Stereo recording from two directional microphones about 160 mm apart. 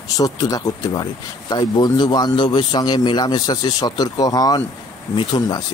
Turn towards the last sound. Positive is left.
turn(degrees=30)  # may be behind; listen again after turning